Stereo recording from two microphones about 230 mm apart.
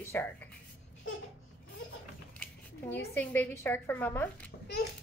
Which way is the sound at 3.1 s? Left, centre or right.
Centre.